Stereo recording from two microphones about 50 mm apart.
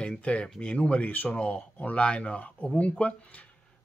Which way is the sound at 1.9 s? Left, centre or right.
Left.